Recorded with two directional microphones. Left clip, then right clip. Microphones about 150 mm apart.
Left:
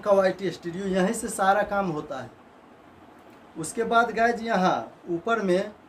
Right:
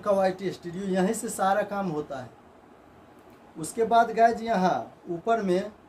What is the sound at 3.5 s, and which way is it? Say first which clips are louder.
A man's voice: right 1 dB; 20° left (ahead or behind).